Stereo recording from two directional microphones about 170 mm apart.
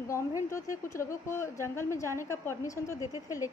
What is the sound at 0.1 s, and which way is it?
A woman's voice, 15° left (ahead or behind).